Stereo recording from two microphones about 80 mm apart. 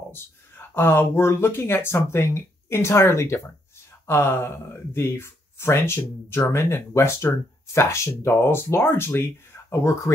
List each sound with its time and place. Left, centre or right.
0.1 s speech: left